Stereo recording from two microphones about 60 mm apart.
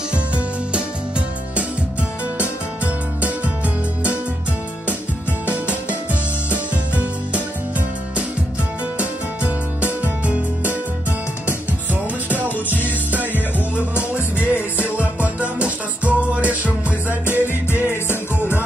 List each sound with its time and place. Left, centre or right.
2.8 s music: right
6.5 s music: right
8.9 s music: right
13.9 s music: left
15.6 s music: right
17.1 s music: left